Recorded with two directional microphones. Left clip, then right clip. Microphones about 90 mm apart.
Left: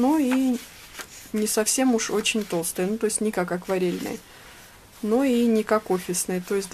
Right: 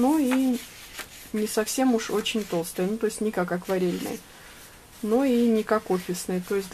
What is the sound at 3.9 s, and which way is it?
Speech, centre (ahead or behind).